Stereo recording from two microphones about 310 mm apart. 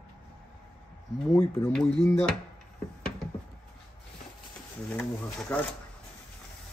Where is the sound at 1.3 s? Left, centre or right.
Centre.